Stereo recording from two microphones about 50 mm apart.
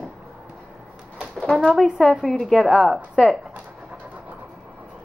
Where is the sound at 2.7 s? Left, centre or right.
Centre.